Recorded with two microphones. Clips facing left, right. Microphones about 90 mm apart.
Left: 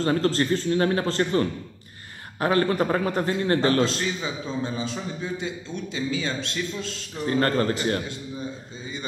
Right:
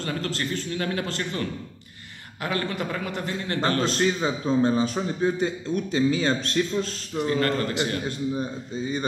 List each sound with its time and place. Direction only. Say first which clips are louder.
0.0 s speech: left 7 dB; 35° left (ahead or behind)
3.6 s a man's voice: left 1 dB; 40° right (ahead or behind)
7.2 s speech: left 3 dB; 35° left (ahead or behind)